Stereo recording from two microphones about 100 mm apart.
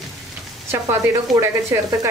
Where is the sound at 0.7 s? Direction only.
25° right (ahead or behind).